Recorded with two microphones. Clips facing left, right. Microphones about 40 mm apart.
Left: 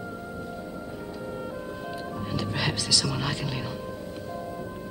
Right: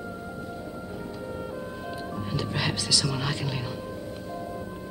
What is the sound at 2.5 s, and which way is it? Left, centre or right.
Speech, centre.